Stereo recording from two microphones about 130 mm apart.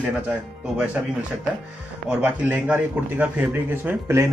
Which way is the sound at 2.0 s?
15° right (ahead or behind).